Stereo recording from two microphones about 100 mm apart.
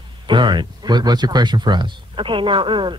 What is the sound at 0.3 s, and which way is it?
Speech, 50° right (ahead or behind).